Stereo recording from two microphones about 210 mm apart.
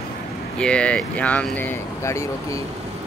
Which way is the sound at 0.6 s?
5° left (ahead or behind).